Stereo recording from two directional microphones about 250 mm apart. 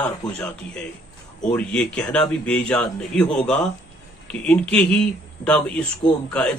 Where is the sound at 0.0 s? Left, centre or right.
Centre.